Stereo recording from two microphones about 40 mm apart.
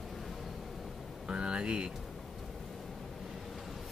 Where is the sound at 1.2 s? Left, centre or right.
Right.